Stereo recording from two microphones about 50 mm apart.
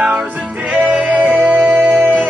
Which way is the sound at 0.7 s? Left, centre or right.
Right.